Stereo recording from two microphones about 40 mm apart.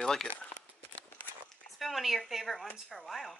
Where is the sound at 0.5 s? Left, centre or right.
Left.